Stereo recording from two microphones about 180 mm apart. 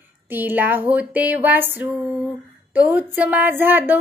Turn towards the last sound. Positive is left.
turn(degrees=-10)  # may be behind; listen again after turning